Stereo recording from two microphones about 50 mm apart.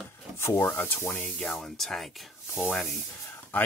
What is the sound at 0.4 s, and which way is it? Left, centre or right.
Speech, left.